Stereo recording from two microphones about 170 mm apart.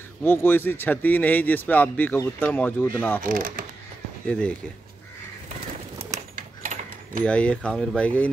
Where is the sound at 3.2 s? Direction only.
55° right (ahead or behind).